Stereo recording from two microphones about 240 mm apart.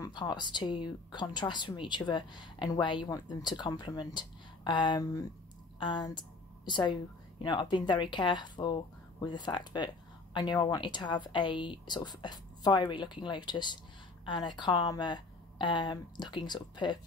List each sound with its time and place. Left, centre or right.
0.0 s speech: centre